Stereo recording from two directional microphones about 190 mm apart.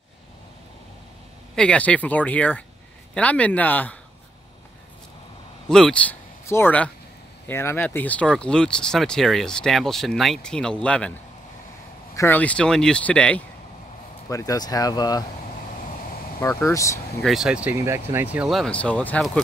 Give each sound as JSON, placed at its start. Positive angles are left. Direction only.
{"t": 1.5, "sound": "speech", "side_deg": 5}
{"t": 5.7, "sound": "speech", "side_deg": 5}
{"t": 12.2, "sound": "speech", "side_deg": 10}
{"t": 14.3, "sound": "speech", "side_deg": 20}
{"t": 16.3, "sound": "speech", "side_deg": 15}
{"t": 17.2, "sound": "speech", "side_deg": 0}